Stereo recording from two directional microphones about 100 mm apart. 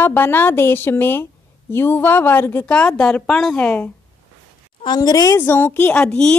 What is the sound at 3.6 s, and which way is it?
Speech, 15° left (ahead or behind).